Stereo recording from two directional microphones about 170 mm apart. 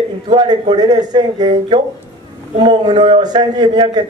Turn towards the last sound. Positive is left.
turn(degrees=-25)  # may be behind; listen again after turning